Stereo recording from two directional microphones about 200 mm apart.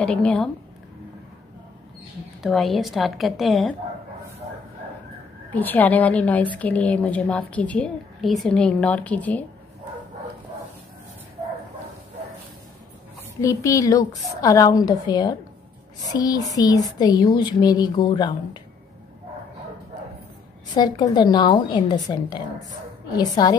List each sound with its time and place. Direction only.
0.0 s a woman's voice: 5° left (ahead or behind)
2.4 s a woman's voice: centre (ahead or behind)
5.5 s a woman's voice: 10° left (ahead or behind)
13.4 s a woman's voice: 15° left (ahead or behind)
20.7 s speech: 20° left (ahead or behind)